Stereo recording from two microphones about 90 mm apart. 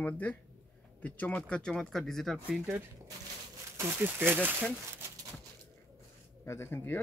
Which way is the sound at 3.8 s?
25° right (ahead or behind).